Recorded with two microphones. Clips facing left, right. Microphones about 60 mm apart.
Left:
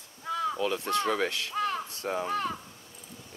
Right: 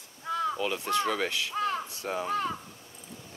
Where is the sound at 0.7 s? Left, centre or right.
Right.